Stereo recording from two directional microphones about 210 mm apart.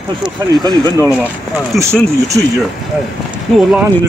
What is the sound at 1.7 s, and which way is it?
Speech, centre (ahead or behind).